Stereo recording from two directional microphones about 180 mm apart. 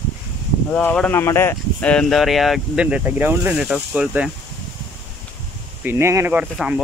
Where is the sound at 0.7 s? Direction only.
10° left (ahead or behind).